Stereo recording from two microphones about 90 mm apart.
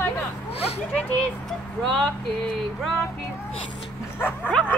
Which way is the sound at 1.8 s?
5° left (ahead or behind).